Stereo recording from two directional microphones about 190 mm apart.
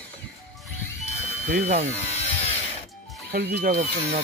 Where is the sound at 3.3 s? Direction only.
55° right (ahead or behind).